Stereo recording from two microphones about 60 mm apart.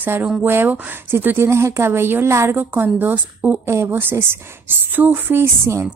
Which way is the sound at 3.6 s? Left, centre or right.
Right.